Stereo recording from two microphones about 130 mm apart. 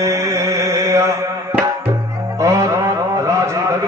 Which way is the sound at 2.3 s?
25° right (ahead or behind).